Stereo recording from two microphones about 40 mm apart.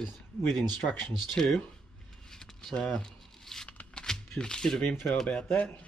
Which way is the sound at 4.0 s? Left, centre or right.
Centre.